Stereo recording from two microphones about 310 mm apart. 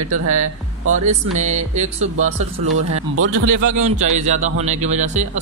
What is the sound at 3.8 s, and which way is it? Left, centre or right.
A man's voice, right.